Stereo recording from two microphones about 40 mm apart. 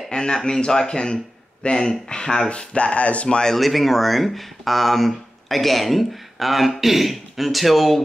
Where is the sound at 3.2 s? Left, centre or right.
Centre.